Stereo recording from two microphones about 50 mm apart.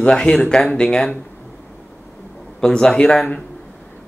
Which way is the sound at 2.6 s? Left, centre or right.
Centre.